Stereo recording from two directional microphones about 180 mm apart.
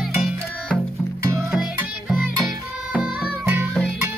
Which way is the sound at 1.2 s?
15° right (ahead or behind).